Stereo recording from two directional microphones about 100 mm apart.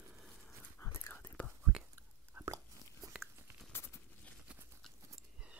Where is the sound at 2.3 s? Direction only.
30° right (ahead or behind).